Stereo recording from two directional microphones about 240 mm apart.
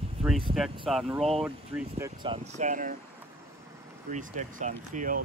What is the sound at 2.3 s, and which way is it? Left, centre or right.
Speech, right.